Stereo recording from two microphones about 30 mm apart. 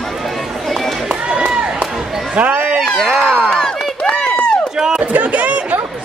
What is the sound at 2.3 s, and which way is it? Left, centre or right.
Run, right.